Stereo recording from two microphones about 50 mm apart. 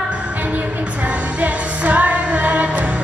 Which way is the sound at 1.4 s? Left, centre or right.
Right.